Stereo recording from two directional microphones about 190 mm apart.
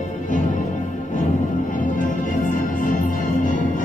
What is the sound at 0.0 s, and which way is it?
Music, 40° left (ahead or behind).